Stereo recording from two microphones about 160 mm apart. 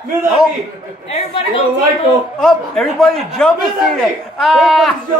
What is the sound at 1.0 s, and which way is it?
Speech, 45° left (ahead or behind).